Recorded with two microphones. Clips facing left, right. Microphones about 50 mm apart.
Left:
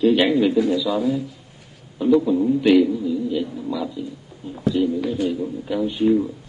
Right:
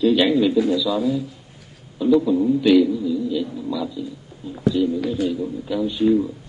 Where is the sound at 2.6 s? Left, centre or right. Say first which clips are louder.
Even; left.